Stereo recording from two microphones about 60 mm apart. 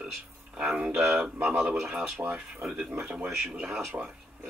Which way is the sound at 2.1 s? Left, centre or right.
Right.